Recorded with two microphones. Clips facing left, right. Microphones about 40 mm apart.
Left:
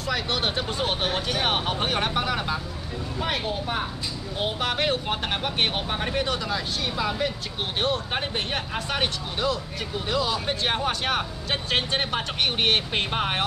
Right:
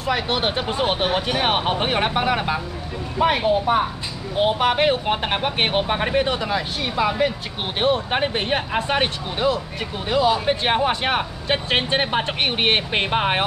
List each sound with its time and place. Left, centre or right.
0.0 s speech: right